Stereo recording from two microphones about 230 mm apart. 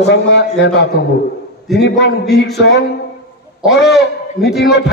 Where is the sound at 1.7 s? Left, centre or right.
Left.